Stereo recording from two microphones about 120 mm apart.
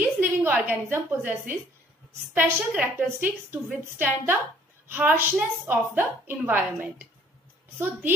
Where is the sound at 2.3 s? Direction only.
15° right (ahead or behind).